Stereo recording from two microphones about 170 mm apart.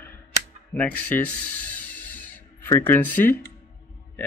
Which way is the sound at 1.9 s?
10° left (ahead or behind).